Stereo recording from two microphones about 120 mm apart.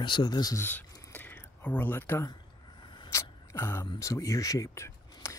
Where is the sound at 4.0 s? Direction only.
25° left (ahead or behind).